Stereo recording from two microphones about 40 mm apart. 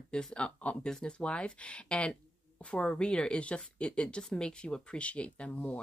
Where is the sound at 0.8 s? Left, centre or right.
Left.